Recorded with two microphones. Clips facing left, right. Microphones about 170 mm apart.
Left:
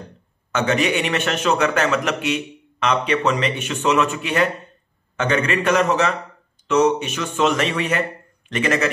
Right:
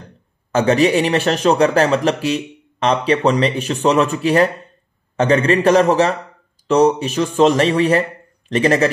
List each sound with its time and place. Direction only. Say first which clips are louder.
0.5 s speech: right 6 dB; 35° right (ahead or behind)